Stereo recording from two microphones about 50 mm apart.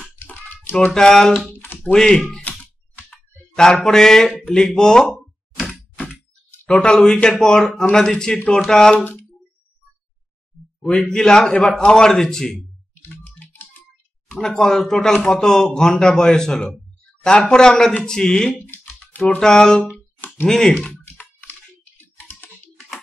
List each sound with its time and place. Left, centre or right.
0.1 s music: left
0.9 s speech: centre
3.5 s speech: centre
5.1 s plop: centre
6.8 s speech: centre
10.8 s speech: centre
13.1 s typing: left
14.3 s speech: centre
18.7 s typing: left
19.4 s speech: centre